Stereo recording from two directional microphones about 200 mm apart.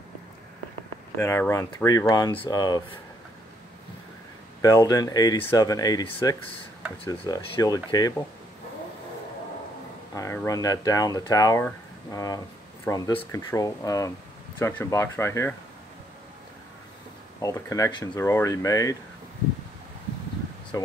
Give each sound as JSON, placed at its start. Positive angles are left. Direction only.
{"t": 1.2, "sound": "speech", "side_deg": 15}
{"t": 4.6, "sound": "speech", "side_deg": 20}
{"t": 10.1, "sound": "speech", "side_deg": 15}
{"t": 17.4, "sound": "speech", "side_deg": 15}
{"t": 20.7, "sound": "speech", "side_deg": 15}